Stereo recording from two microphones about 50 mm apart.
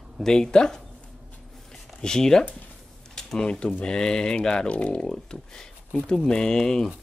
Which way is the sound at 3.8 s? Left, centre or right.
Centre.